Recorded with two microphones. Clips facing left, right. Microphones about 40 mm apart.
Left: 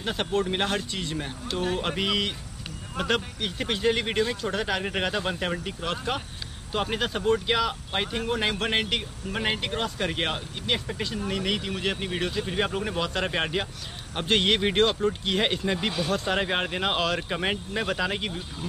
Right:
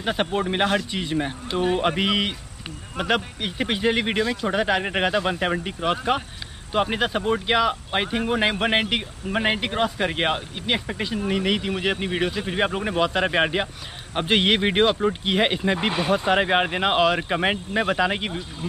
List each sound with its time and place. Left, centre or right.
0.0 s speech: centre